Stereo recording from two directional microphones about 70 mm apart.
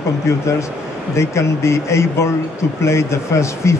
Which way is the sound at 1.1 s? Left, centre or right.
Left.